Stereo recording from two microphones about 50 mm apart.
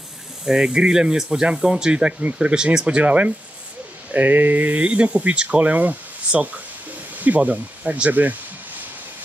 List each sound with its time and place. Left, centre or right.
0.5 s speech: centre
3.0 s speech: right